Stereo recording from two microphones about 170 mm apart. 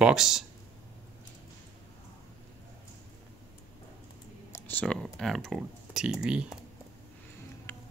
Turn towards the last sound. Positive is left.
turn(degrees=-5)  # may be behind; listen again after turning